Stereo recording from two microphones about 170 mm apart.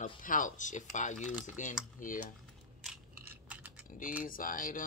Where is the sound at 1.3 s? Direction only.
10° right (ahead or behind).